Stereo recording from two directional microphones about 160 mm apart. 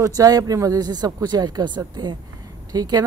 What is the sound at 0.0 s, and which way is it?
Speech, 20° right (ahead or behind).